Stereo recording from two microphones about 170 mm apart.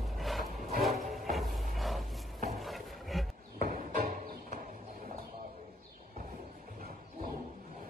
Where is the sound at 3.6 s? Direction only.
55° right (ahead or behind).